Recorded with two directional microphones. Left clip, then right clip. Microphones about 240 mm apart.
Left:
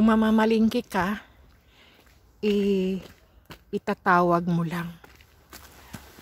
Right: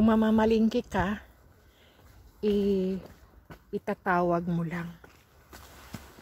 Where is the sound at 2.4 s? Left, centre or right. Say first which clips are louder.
Left 3 dB; centre.